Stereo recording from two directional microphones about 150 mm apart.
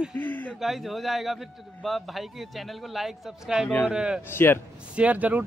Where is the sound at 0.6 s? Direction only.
Centre (ahead or behind).